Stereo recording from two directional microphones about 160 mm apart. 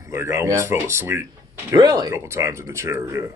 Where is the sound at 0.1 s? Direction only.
15° right (ahead or behind).